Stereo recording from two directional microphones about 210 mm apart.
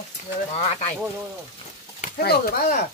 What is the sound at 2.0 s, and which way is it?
Speech, 45° left (ahead or behind).